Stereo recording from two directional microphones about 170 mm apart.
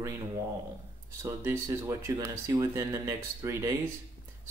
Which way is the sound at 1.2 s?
15° right (ahead or behind).